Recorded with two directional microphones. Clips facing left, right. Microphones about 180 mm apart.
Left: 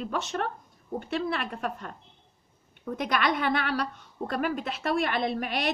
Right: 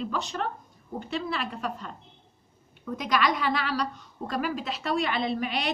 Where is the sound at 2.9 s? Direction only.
55° left (ahead or behind).